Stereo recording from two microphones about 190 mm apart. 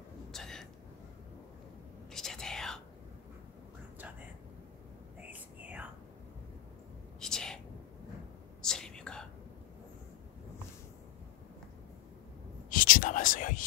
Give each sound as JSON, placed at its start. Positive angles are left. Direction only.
{"t": 0.3, "sound": "a sound", "side_deg": 0}
{"t": 2.1, "sound": "whispering", "side_deg": 0}
{"t": 5.3, "sound": "whispering", "side_deg": -10}
{"t": 7.2, "sound": "a sound", "side_deg": 5}
{"t": 8.6, "sound": "whispering", "side_deg": 5}
{"t": 12.6, "sound": "whispering", "side_deg": 45}